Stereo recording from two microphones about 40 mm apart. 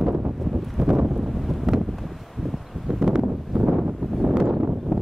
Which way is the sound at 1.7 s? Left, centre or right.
Centre.